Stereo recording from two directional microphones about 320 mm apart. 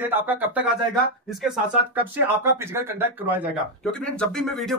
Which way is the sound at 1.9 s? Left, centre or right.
Centre.